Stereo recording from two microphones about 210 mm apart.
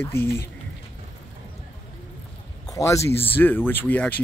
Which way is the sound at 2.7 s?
15° left (ahead or behind).